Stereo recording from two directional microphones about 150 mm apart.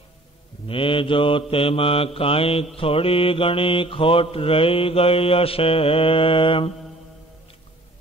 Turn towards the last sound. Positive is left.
turn(degrees=35)  # may be behind; listen again after turning